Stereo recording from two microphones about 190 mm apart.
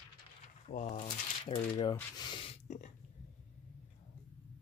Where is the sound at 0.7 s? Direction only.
35° left (ahead or behind).